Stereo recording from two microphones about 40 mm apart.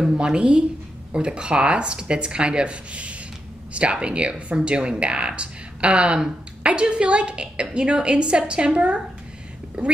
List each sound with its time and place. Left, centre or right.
0.2 s speech: right